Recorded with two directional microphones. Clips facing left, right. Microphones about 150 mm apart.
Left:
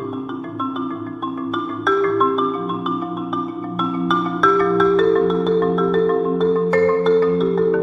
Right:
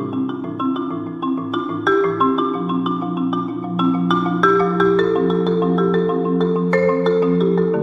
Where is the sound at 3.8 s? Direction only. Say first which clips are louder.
Right 3 dB; centre (ahead or behind).